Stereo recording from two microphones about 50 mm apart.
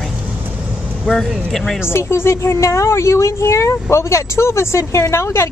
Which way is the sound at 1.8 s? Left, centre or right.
Left.